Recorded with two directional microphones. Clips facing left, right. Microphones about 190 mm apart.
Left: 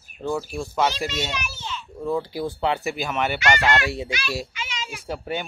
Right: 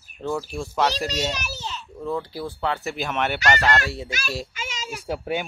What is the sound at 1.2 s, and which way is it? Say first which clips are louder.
Children playing: right 2 dB; 40° right (ahead or behind).